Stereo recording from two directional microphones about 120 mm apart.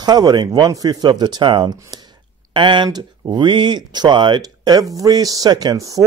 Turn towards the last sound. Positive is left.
turn(degrees=-35)  # may be behind; listen again after turning